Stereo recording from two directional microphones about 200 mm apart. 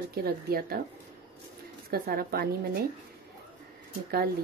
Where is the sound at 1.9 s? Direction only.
50° right (ahead or behind).